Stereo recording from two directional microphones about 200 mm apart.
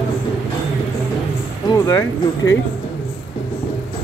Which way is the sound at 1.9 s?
15° left (ahead or behind).